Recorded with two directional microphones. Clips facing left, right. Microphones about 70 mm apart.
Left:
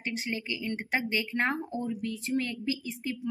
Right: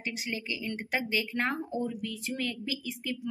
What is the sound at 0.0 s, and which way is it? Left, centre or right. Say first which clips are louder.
A woman's voice: left 2 dB; left.